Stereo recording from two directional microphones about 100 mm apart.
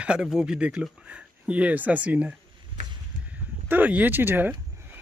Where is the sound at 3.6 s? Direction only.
15° right (ahead or behind).